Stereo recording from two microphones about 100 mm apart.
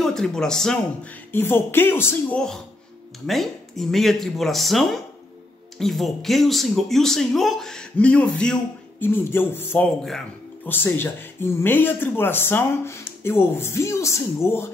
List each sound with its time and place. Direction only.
0.0 s a man's voice: 5° left (ahead or behind)
1.3 s speech: 20° left (ahead or behind)
2.3 s speech: 5° left (ahead or behind)
9.0 s speech: 20° left (ahead or behind)